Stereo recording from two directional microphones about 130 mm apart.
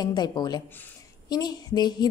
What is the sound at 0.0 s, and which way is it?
A woman's voice, 30° left (ahead or behind).